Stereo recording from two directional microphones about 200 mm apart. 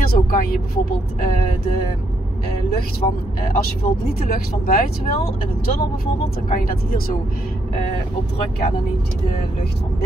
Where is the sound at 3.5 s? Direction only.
50° left (ahead or behind).